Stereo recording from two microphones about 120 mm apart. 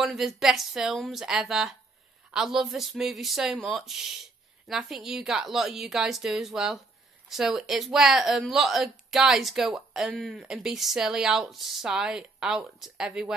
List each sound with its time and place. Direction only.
0.0 s speech: centre (ahead or behind)